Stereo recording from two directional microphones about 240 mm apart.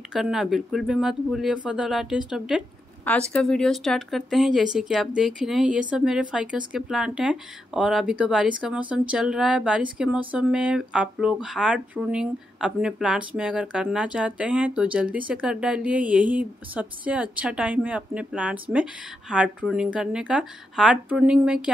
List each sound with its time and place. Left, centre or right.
0.1 s speech: centre